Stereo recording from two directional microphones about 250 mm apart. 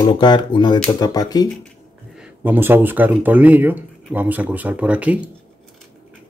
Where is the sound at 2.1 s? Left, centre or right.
Centre.